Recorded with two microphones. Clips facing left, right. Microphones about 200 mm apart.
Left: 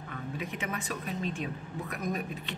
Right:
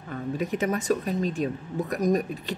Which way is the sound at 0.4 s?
40° right (ahead or behind).